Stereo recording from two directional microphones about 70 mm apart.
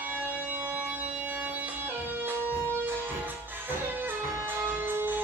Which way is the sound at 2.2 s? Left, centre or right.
Right.